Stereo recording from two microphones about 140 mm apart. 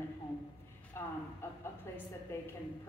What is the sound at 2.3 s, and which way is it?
Speech, 15° left (ahead or behind).